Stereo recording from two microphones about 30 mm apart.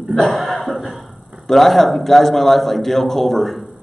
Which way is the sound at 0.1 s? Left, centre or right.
Centre.